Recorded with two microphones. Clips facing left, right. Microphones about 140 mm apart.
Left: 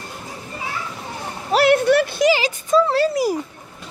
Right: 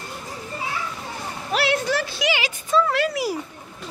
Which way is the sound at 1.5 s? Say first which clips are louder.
Left 8 dB; 50° left (ahead or behind).